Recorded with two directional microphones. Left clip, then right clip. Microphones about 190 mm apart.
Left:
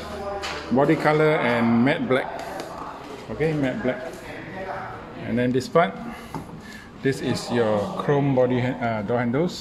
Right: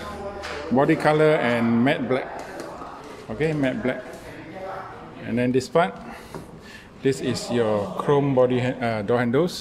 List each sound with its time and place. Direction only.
0.7 s speech: 10° right (ahead or behind)
5.3 s speech: 10° right (ahead or behind)
7.0 s speech: 10° right (ahead or behind)